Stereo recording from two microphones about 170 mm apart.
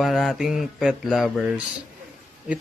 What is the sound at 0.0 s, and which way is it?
A man's voice, centre (ahead or behind).